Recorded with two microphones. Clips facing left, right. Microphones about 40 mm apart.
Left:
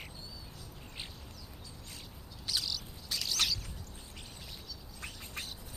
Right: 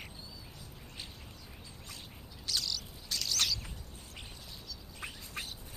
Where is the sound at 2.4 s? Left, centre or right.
Centre.